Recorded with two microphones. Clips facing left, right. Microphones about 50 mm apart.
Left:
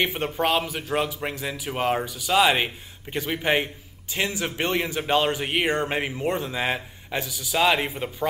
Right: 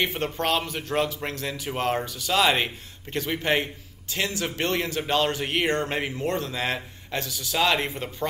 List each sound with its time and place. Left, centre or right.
0.0 s speech: centre